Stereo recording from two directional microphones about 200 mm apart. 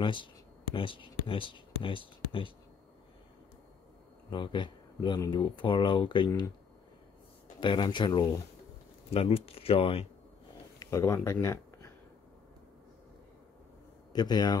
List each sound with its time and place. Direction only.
0.0 s speech: 25° left (ahead or behind)
4.3 s speech: 25° left (ahead or behind)
7.6 s speech: 25° left (ahead or behind)
10.8 s speech: 15° left (ahead or behind)
14.1 s speech: 20° left (ahead or behind)